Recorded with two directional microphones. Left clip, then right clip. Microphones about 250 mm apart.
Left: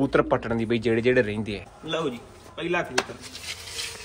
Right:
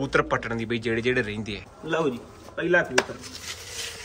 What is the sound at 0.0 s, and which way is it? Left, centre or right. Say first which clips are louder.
Speech: left 2 dB; centre.